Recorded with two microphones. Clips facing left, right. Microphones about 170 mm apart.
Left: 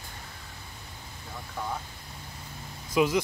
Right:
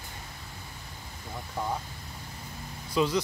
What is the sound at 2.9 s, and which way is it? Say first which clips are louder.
Speech: left 2 dB; 10° left (ahead or behind).